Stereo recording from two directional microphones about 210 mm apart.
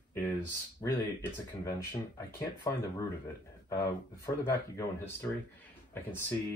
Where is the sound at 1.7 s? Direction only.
15° left (ahead or behind).